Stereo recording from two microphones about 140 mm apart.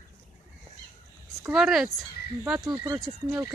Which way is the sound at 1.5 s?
5° right (ahead or behind).